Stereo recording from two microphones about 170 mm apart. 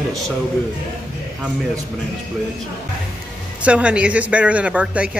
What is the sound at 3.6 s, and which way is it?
Speech, 5° right (ahead or behind).